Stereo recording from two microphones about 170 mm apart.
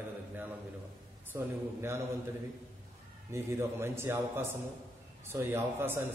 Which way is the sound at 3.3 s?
15° right (ahead or behind).